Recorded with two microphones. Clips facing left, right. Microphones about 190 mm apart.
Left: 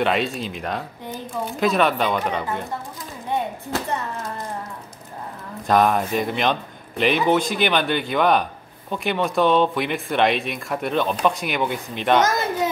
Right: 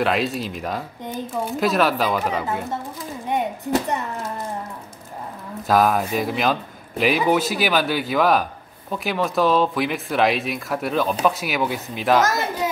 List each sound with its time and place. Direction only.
0.0 s speech: centre (ahead or behind)
3.3 s a sound: 15° right (ahead or behind)
5.6 s speech: centre (ahead or behind)